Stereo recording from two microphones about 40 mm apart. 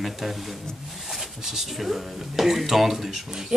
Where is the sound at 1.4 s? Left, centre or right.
Centre.